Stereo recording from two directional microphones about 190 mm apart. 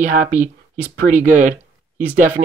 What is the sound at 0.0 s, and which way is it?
Speech, 40° right (ahead or behind).